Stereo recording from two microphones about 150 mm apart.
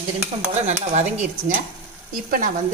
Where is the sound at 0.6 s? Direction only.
50° right (ahead or behind).